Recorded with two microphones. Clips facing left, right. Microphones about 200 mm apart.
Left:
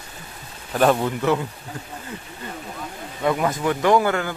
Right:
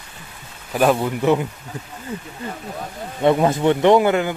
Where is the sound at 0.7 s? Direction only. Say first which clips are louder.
Right 1 dB; 5° right (ahead or behind).